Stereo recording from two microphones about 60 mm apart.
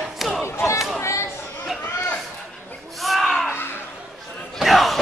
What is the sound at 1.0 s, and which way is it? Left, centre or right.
Chatter, left.